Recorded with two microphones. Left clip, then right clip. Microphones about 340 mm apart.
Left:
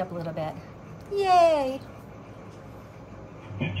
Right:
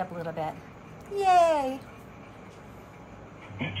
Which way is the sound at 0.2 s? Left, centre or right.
Centre.